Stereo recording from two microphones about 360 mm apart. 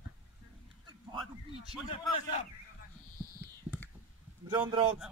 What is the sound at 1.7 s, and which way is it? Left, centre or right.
Speech, centre.